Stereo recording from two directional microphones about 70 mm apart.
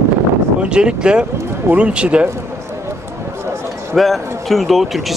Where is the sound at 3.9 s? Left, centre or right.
Centre.